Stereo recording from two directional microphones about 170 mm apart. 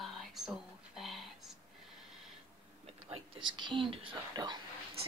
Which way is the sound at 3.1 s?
25° right (ahead or behind).